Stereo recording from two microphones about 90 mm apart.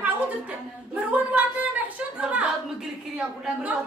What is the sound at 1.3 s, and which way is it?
A woman's voice, 15° right (ahead or behind).